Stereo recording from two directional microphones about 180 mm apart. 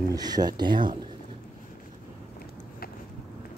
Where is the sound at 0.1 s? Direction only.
20° right (ahead or behind).